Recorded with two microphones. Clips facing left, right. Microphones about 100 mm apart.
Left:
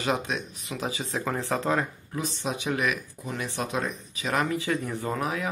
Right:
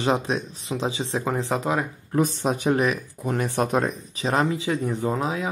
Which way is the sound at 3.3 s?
50° right (ahead or behind).